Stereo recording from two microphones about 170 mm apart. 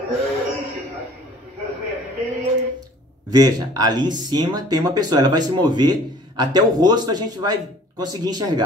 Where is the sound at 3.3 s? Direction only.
25° right (ahead or behind).